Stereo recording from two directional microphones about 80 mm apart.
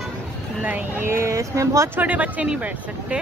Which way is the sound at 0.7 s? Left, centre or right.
Right.